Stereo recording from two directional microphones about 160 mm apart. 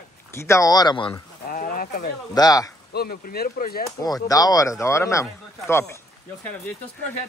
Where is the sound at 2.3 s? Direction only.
25° left (ahead or behind).